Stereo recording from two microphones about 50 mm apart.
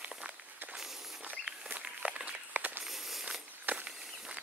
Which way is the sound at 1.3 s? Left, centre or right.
Right.